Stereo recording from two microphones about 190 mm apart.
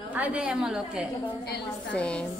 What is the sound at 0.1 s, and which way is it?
A woman's voice, 10° right (ahead or behind).